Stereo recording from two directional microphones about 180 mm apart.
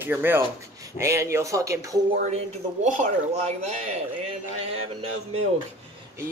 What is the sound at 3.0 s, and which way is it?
Speech, 35° right (ahead or behind).